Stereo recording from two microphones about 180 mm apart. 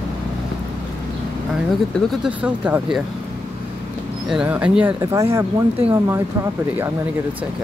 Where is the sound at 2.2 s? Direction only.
5° right (ahead or behind).